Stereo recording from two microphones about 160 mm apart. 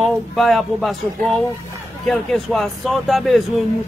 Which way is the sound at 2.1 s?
5° left (ahead or behind).